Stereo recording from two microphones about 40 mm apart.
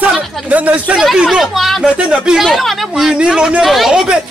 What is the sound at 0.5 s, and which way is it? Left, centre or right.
Speech, right.